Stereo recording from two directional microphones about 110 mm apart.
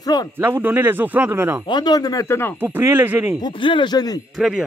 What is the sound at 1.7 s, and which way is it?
Speech, 40° left (ahead or behind).